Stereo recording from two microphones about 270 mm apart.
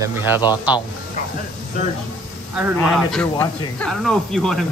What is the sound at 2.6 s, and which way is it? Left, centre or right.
Speech, centre.